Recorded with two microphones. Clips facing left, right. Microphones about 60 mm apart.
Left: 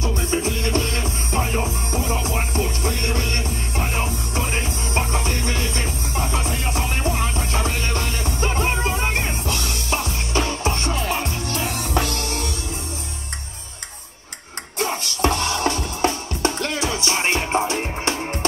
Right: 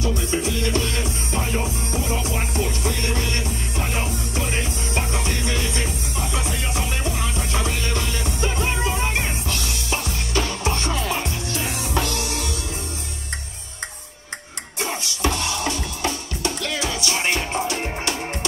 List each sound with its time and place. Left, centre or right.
0.0 s music: left
10.3 s music: left
14.8 s music: left